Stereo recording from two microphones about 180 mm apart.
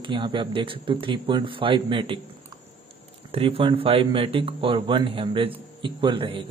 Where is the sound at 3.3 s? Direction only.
30° right (ahead or behind).